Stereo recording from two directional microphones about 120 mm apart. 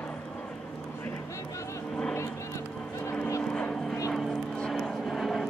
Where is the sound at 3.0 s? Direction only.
20° left (ahead or behind).